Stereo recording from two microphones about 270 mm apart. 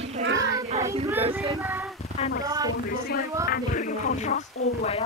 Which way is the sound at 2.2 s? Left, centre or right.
Left.